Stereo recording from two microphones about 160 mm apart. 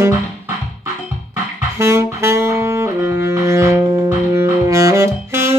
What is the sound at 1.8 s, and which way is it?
Saxophone, 15° right (ahead or behind).